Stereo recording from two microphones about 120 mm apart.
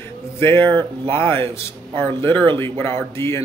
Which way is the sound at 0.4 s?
20° left (ahead or behind).